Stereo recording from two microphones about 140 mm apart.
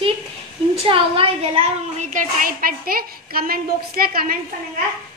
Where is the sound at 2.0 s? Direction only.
65° right (ahead or behind); by 4.3 s 90° right.